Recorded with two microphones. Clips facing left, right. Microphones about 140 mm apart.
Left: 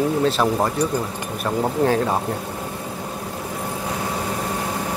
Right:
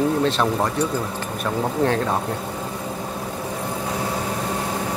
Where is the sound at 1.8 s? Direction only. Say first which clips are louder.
Left 2 dB; 5° left (ahead or behind).